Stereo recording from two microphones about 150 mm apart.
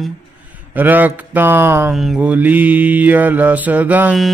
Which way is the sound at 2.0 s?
5° right (ahead or behind).